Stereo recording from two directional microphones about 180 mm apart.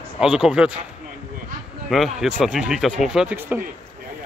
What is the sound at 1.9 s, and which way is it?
Speech, centre (ahead or behind).